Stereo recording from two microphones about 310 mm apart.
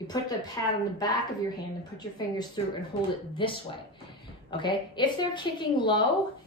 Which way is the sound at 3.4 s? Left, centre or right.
Centre.